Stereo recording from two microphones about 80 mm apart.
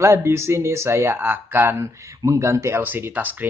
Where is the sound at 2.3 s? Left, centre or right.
Right.